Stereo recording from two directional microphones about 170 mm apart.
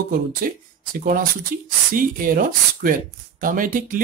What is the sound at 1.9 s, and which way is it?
Speech, 55° right (ahead or behind).